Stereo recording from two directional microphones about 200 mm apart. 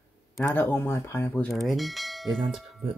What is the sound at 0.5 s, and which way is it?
Speech, 10° left (ahead or behind).